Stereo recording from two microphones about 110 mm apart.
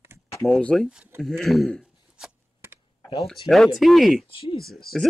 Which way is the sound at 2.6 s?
20° right (ahead or behind).